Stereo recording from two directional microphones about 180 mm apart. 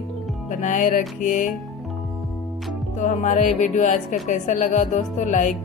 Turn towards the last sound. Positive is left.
turn(degrees=45)  # may be behind; listen again after turning